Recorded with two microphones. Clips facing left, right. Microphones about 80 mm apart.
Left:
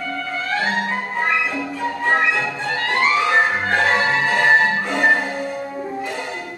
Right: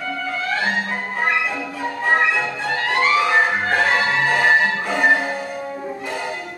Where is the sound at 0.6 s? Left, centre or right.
Centre.